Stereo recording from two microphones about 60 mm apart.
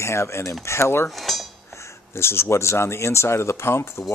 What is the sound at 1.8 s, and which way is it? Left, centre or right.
Speech, left.